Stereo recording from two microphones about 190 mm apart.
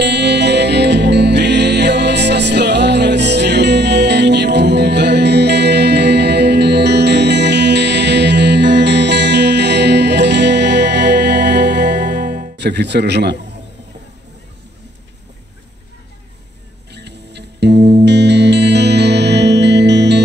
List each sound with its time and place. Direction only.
0.0 s music: 65° right (ahead or behind)
16.9 s music: 60° right (ahead or behind)